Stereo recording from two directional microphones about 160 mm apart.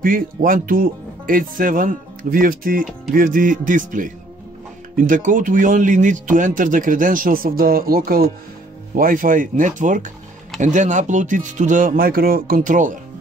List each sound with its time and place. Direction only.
0.0 s speech: 60° right (ahead or behind)
8.9 s speech: 60° right (ahead or behind)